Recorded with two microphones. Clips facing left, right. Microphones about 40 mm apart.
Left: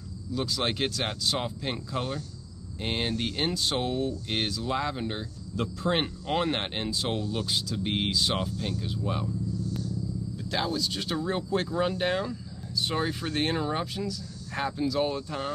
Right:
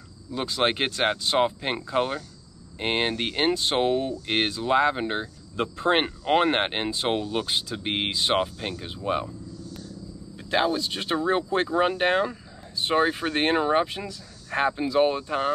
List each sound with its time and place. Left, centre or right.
0.3 s speech: right
10.3 s speech: right